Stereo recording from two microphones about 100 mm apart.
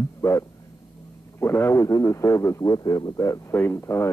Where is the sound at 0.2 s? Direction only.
30° left (ahead or behind).